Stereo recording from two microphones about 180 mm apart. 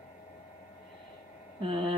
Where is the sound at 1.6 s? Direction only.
30° right (ahead or behind).